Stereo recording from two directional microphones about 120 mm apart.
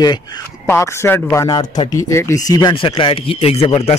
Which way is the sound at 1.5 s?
35° left (ahead or behind).